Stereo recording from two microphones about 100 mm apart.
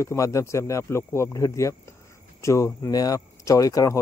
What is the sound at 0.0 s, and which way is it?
Speech, 30° left (ahead or behind).